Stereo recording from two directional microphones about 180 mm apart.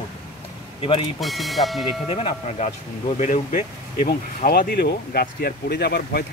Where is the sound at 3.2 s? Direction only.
45° left (ahead or behind).